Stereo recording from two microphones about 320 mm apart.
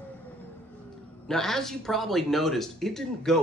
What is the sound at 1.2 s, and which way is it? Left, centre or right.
Speech, centre.